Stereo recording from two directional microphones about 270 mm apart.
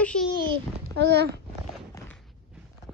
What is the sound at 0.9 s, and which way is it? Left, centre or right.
Speech, right.